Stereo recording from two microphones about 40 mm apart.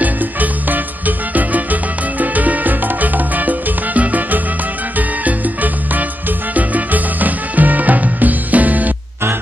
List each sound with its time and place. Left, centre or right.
0.0 s music: right